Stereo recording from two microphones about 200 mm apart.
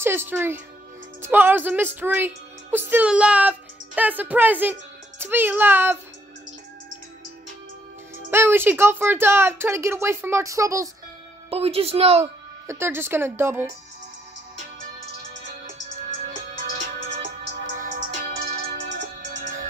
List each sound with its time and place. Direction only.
0.0 s a woman's voice: 10° right (ahead or behind)
8.3 s a woman's voice: 10° right (ahead or behind)
11.5 s a woman's voice: 30° right (ahead or behind)
12.6 s a woman's voice: 10° right (ahead or behind)
16.8 s music: 35° right (ahead or behind)